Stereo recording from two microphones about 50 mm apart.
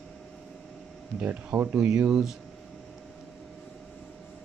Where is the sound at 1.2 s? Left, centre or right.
Right.